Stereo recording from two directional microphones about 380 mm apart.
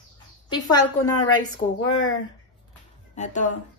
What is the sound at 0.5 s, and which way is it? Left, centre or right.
Speech, centre.